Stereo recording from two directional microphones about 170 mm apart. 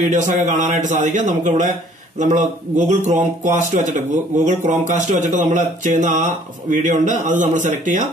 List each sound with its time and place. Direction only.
0.0 s speech: 45° right (ahead or behind)